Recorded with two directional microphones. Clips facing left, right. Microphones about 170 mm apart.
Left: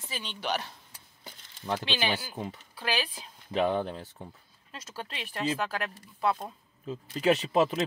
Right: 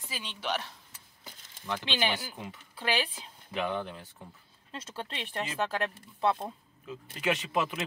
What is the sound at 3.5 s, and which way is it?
Speech, 35° left (ahead or behind).